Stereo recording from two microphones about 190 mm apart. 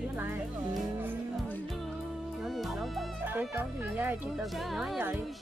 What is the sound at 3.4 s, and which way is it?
A woman's voice, 10° right (ahead or behind).